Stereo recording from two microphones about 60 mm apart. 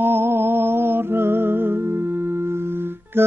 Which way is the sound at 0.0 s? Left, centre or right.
Right.